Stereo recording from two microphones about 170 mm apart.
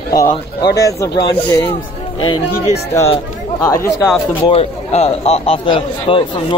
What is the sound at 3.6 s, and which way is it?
Speech, 15° left (ahead or behind).